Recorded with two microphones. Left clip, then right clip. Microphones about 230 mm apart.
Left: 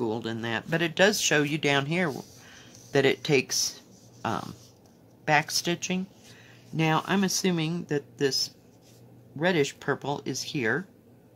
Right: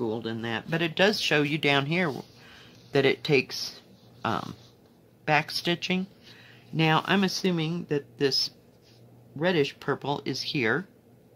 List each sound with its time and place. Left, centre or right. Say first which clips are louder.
0.0 s speech: even; centre